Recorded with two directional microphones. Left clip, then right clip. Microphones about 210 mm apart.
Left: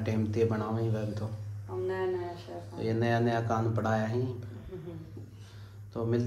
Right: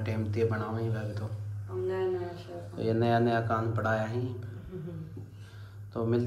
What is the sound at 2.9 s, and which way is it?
Speech, 15° left (ahead or behind).